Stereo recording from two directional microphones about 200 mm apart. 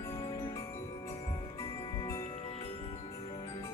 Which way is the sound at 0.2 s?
20° left (ahead or behind).